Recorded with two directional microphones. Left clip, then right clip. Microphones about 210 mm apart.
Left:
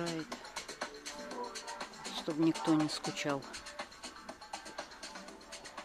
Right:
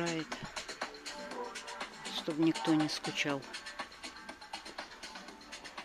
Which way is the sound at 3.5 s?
50° left (ahead or behind).